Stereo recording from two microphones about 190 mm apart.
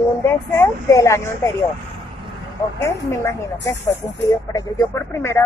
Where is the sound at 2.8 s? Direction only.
15° left (ahead or behind).